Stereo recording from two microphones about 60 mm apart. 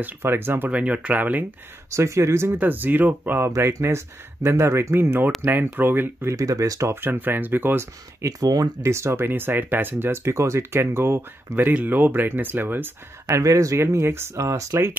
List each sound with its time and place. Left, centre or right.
0.0 s speech: right
0.7 s speech: right
1.9 s speech: right
2.6 s speech: right
3.8 s speech: right
6.3 s speech: right
7.0 s speech: right
8.3 s speech: right
8.8 s speech: right
13.3 s speech: right
14.4 s speech: right